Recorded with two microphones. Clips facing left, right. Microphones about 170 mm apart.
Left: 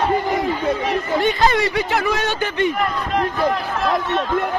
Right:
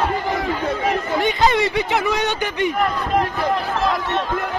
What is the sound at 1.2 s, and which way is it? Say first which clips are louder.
Speech: even; 20° right (ahead or behind).